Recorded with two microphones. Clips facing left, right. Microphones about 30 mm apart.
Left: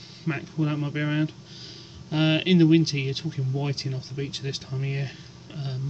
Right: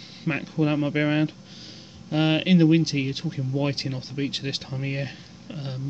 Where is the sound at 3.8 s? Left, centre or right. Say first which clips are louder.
Right 4 dB; right.